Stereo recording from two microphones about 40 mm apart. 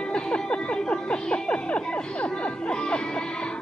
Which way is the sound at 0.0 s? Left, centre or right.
Left.